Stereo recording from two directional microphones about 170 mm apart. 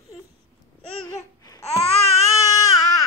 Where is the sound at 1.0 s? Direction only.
20° left (ahead or behind).